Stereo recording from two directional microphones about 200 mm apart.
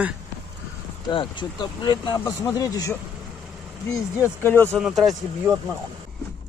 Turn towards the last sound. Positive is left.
turn(degrees=0)  # may be behind; listen again after turning